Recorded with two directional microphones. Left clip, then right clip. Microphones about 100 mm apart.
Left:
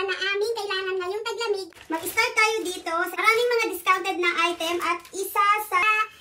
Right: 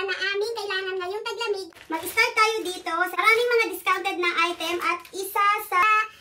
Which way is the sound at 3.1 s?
20° right (ahead or behind).